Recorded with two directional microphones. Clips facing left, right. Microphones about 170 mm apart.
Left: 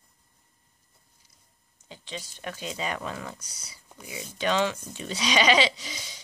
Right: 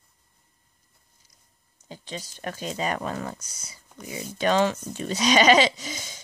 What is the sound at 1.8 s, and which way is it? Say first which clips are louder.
Speech: right 3 dB; 40° right (ahead or behind).